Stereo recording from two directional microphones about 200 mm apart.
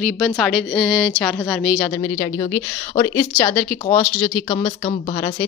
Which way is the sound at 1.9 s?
15° left (ahead or behind).